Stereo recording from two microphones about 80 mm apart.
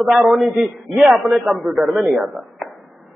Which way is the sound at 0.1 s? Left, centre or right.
Centre.